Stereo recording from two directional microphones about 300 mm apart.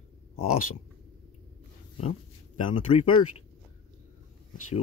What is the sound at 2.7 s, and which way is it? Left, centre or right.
Speech, centre.